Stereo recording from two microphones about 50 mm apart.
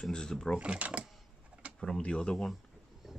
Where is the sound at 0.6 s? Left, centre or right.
Right.